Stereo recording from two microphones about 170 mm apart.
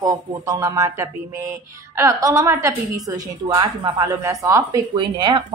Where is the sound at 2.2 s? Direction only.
20° right (ahead or behind).